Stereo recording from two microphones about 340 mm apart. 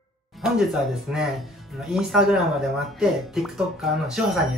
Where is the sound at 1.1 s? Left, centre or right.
Centre.